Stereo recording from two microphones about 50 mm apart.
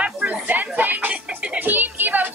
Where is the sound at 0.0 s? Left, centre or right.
Right.